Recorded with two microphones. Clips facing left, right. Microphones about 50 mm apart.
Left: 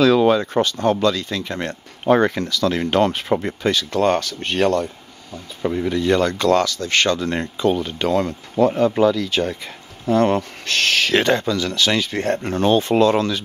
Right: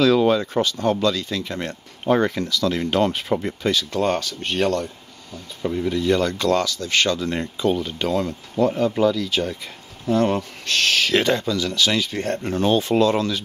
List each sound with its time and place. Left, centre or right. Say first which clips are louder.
0.0 s speech: left 2 dB; left
5.6 s speech: left 2 dB; left